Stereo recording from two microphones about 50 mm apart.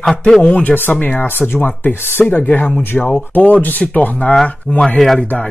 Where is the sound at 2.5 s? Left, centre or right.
Left.